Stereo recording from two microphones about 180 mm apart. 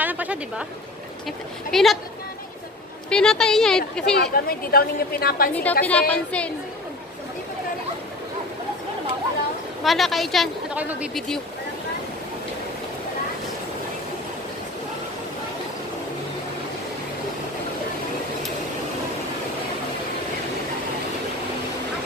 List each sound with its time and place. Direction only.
0.0 s a sound: 10° right (ahead or behind)
1.2 s a woman's voice: centre (ahead or behind)
3.1 s a woman's voice: 5° left (ahead or behind)
4.2 s a woman's voice: 55° left (ahead or behind)
5.5 s a woman's voice: 10° left (ahead or behind)
9.8 s a woman's voice: centre (ahead or behind)